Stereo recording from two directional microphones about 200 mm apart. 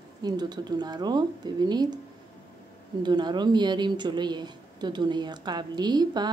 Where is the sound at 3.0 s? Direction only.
20° right (ahead or behind).